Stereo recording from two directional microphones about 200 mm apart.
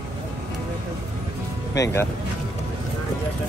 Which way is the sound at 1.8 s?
15° left (ahead or behind).